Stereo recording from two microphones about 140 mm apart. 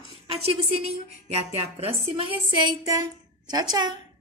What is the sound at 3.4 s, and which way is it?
Speech, 30° right (ahead or behind).